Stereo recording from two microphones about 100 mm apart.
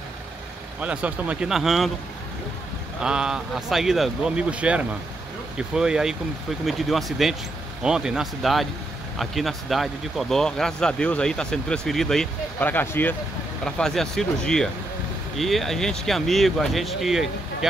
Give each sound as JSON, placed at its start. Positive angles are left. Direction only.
{"t": 0.7, "sound": "speech", "side_deg": -15}
{"t": 1.5, "sound": "speech", "side_deg": -5}
{"t": 3.0, "sound": "speech", "side_deg": -10}
{"t": 12.5, "sound": "speech", "side_deg": 20}
{"t": 13.7, "sound": "speech", "side_deg": 5}